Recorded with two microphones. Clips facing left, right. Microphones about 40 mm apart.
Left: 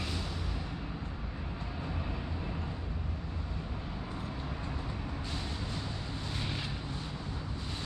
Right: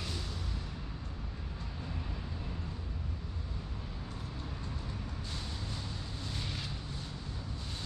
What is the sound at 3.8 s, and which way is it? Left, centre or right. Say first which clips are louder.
Vehicle: left 5 dB; left.